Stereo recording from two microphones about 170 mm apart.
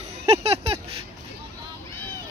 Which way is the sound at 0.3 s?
35° right (ahead or behind).